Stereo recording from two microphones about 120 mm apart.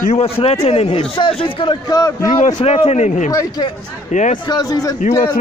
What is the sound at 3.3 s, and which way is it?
Speech, 30° left (ahead or behind).